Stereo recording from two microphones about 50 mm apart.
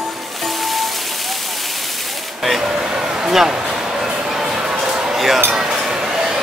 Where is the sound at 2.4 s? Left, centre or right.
Centre.